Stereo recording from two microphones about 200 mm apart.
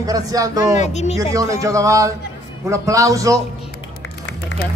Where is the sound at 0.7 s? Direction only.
35° left (ahead or behind).